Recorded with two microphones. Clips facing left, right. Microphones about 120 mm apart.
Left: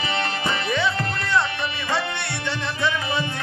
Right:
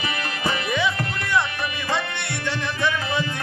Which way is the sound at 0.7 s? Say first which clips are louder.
Even; 10° right (ahead or behind).